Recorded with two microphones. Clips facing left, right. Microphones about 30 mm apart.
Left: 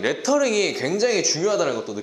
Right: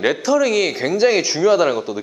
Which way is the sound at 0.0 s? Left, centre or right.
Centre.